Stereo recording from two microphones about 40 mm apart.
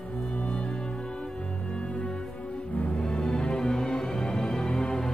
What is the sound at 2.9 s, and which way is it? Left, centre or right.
Music, left.